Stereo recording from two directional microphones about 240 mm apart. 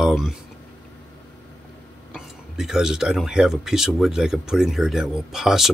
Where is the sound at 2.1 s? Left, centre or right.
Centre.